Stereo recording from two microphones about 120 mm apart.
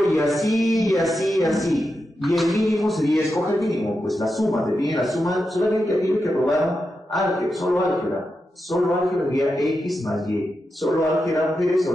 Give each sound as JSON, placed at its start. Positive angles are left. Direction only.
{"t": 0.0, "sound": "speech", "side_deg": 0}
{"t": 3.3, "sound": "a man's voice", "side_deg": 25}
{"t": 3.5, "sound": "speech", "side_deg": 0}
{"t": 8.7, "sound": "speech", "side_deg": 0}